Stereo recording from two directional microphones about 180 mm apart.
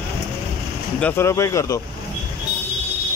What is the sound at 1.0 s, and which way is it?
Speech, 15° left (ahead or behind).